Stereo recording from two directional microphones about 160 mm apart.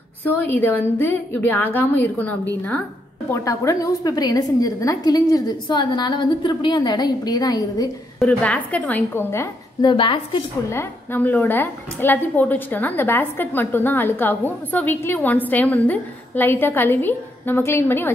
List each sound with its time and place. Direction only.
0.2 s a woman's voice: 10° left (ahead or behind)
8.2 s a woman's voice: 5° left (ahead or behind)
9.8 s a woman's voice: 30° left (ahead or behind)
10.7 s a woman's voice: 15° left (ahead or behind)